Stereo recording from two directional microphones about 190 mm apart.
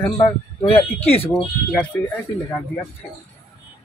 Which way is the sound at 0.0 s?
25° left (ahead or behind).